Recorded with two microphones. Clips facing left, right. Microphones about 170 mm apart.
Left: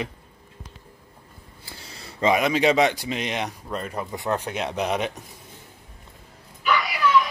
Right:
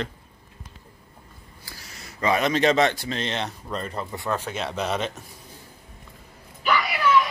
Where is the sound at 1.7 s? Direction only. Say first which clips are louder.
Left 2 dB; 30° left (ahead or behind).